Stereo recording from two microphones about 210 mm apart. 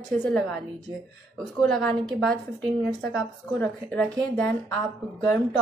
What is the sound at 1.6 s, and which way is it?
A woman's voice, 5° left (ahead or behind).